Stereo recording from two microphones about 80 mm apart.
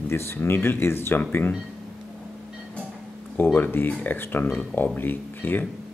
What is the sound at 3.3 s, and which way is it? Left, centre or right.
Speech, left.